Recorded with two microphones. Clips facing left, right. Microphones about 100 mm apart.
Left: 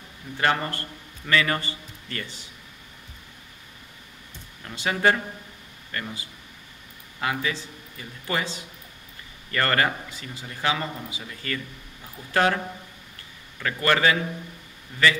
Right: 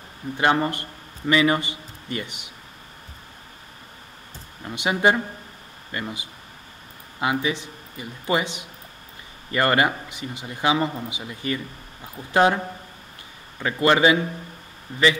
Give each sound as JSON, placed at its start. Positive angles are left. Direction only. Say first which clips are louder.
{"t": 0.4, "sound": "a man's voice", "louder": "right 4 dB", "side_deg": -20}
{"t": 4.6, "sound": "speech", "louder": "right 2 dB", "side_deg": -20}
{"t": 14.9, "sound": "speech", "louder": "right 2 dB", "side_deg": -35}